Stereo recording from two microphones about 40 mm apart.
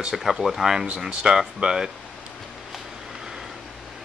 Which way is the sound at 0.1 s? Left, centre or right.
Centre.